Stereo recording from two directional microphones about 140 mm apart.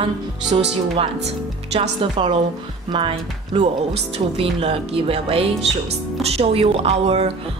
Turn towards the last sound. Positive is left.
turn(degrees=-45)  # may be behind; listen again after turning